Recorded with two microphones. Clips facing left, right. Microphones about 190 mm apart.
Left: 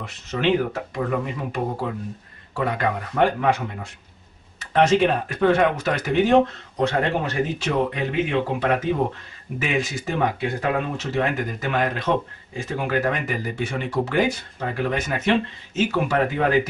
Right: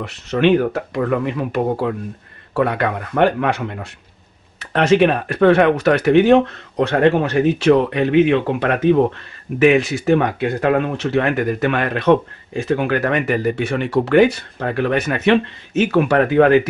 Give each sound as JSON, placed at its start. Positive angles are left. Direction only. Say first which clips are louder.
{"t": 0.0, "sound": "speech", "louder": "right 7 dB", "side_deg": -70}